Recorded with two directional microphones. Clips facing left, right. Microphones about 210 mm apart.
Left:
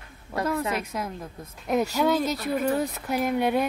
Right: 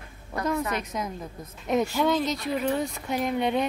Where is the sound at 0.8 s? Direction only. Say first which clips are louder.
Even; 5° left (ahead or behind).